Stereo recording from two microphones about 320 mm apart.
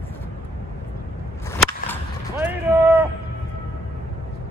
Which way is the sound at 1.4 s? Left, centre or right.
Centre.